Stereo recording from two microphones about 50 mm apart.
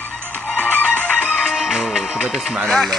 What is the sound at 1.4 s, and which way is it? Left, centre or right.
Music, centre.